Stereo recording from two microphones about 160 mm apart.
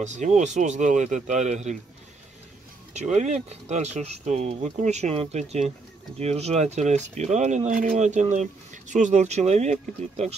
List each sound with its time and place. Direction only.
0.0 s speech: 45° right (ahead or behind)
2.9 s speech: 45° right (ahead or behind)